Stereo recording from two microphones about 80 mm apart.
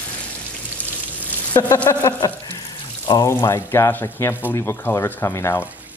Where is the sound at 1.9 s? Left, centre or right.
Left.